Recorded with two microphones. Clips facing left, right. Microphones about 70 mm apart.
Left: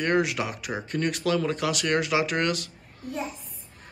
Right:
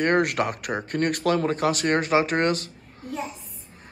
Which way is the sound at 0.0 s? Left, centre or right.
Right.